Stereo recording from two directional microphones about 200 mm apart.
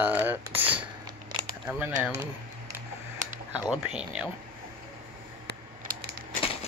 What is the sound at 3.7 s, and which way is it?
Speech, 5° right (ahead or behind).